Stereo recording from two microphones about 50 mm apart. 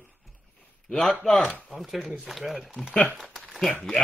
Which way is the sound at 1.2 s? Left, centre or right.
Left.